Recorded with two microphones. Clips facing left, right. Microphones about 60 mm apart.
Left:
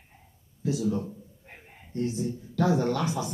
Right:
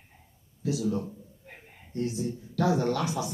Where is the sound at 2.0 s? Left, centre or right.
Left.